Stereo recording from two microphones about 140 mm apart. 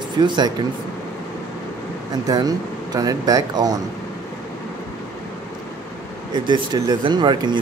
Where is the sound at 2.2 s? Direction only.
25° right (ahead or behind).